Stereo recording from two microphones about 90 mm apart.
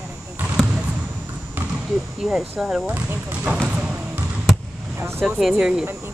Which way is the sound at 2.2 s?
5° right (ahead or behind).